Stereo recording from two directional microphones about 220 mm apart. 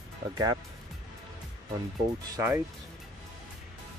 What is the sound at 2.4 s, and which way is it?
Speech, 10° right (ahead or behind).